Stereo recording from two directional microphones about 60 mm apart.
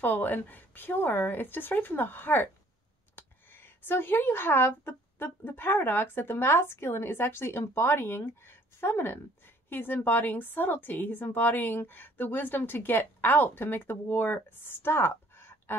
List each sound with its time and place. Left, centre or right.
0.0 s speech: left